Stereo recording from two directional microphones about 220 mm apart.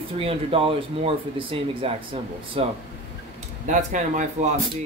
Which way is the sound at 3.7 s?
35° right (ahead or behind).